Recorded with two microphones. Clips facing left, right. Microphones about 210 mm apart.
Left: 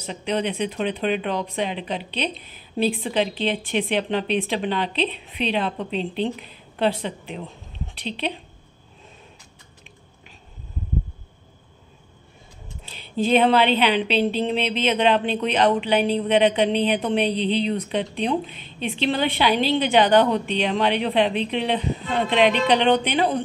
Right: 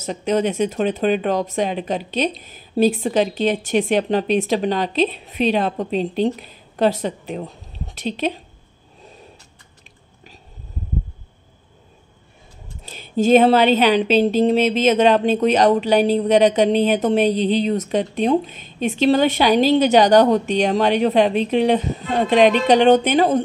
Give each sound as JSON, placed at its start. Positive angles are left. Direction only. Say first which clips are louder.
{"t": 0.0, "sound": "speech", "louder": "right 5 dB", "side_deg": -45}
{"t": 12.8, "sound": "speech", "louder": "right 6 dB", "side_deg": -45}